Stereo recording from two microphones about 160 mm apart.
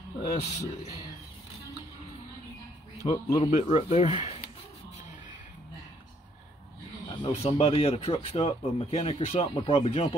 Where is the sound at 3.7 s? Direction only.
40° left (ahead or behind).